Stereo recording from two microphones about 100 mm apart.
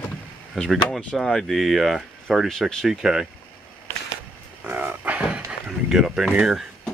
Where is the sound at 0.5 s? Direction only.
5° left (ahead or behind).